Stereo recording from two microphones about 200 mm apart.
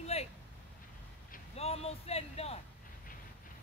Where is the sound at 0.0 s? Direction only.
30° left (ahead or behind).